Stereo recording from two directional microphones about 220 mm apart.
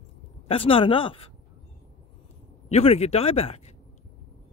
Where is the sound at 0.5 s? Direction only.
25° left (ahead or behind).